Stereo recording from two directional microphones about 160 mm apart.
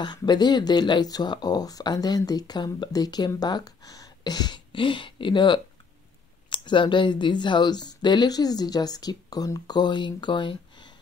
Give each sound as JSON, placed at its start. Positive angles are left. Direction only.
{"t": 0.0, "sound": "speech", "side_deg": 25}